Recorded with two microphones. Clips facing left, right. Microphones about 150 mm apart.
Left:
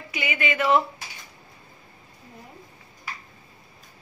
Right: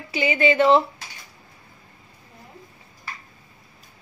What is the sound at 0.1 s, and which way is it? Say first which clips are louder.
Speech: right 8 dB; 30° right (ahead or behind).